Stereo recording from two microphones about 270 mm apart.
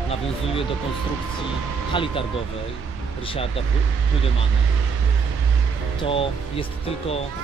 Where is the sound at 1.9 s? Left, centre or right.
Centre.